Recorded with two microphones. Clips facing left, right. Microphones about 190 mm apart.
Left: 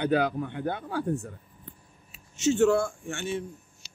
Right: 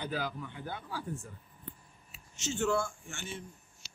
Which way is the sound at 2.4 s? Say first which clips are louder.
Left 9 dB; 60° left (ahead or behind).